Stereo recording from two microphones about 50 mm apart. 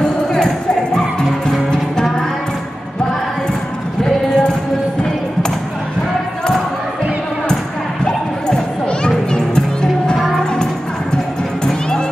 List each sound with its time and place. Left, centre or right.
0.0 s music: centre
4.0 s a sound: centre
8.0 s music: centre